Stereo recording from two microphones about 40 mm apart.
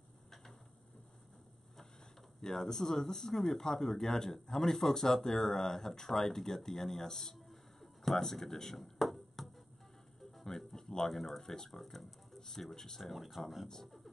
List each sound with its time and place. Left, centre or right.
0.3 s tick-tock: centre
2.4 s speech: centre
7.3 s a sound: centre
10.6 s a sound: centre
10.9 s speech: centre
13.0 s speech: centre